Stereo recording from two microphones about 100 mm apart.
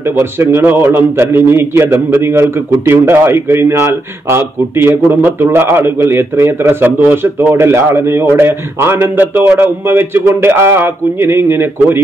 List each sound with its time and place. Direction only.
0.0 s a man's voice: 25° right (ahead or behind)